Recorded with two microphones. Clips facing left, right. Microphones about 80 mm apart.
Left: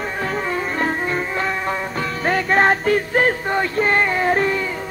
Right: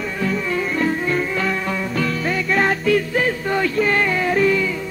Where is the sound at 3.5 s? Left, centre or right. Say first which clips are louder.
Even; left.